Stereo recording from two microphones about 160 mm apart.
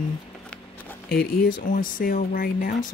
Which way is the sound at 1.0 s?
70° left (ahead or behind).